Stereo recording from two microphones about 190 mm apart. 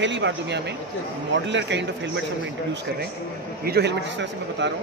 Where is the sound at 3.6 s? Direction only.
60° right (ahead or behind).